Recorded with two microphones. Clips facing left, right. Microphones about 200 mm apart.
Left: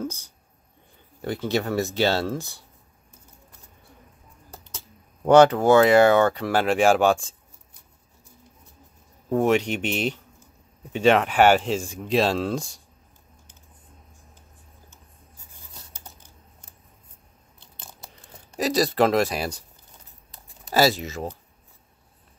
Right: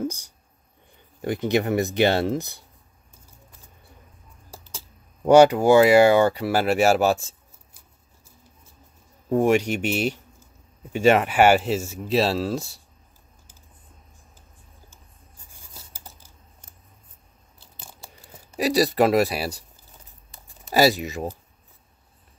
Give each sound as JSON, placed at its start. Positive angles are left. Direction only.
{"t": 0.0, "sound": "speech", "side_deg": -15}
{"t": 5.2, "sound": "speech", "side_deg": -10}
{"t": 9.3, "sound": "speech", "side_deg": -10}
{"t": 17.6, "sound": "chewing", "side_deg": -5}
{"t": 20.7, "sound": "speech", "side_deg": -15}